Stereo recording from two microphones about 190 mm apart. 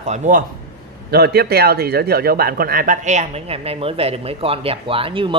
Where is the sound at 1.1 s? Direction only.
60° right (ahead or behind).